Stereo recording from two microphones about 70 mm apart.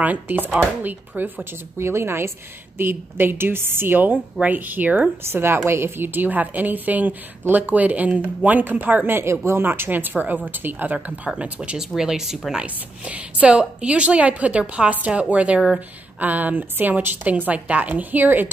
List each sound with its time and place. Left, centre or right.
0.0 s a woman's voice: right
5.2 s a woman's voice: right; by 11.8 s centre
11.8 s speech: centre
12.6 s a woman's voice: right